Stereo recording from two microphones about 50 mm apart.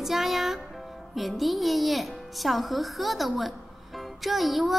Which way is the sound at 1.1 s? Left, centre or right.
Centre.